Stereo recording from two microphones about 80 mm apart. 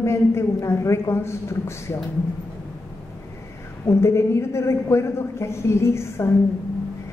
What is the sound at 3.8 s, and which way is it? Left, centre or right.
A woman's voice, left.